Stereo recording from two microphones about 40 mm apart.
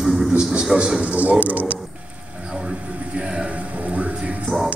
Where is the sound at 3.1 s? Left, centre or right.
Right.